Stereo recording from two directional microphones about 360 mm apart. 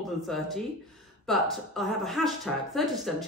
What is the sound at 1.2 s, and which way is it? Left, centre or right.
Speech, centre.